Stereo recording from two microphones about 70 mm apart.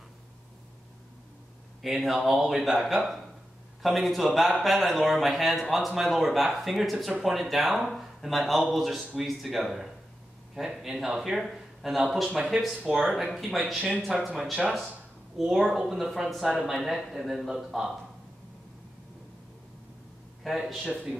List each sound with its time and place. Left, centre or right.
1.8 s speech: centre
20.4 s speech: centre